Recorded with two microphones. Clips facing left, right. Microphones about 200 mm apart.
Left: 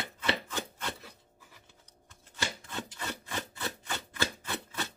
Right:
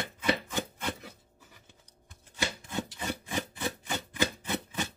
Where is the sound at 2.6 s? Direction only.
15° right (ahead or behind).